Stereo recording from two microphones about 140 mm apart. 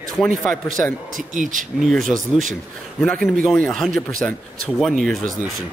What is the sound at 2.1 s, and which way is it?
Speech, 65° right (ahead or behind).